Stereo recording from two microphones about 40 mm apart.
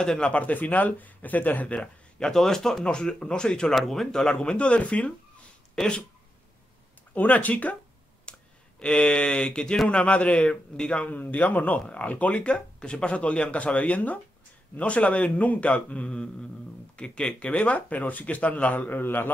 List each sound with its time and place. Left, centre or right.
0.0 s speech: centre
0.3 s speech: left
1.8 s speech: centre
3.7 s speech: centre; by 5.1 s left
7.2 s speech: left
8.3 s speech: left
11.1 s speech: left
16.9 s speech: left
17.3 s speech: left